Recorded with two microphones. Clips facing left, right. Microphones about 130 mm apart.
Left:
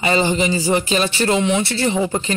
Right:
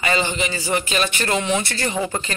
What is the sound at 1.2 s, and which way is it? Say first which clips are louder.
Speech: left 4 dB; 20° left (ahead or behind).